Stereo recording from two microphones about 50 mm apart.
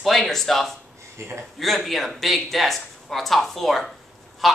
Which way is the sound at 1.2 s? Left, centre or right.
Right.